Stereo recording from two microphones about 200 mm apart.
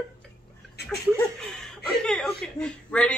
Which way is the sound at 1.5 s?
5° left (ahead or behind).